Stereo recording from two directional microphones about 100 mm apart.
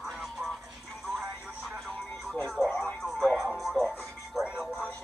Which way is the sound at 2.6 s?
15° left (ahead or behind).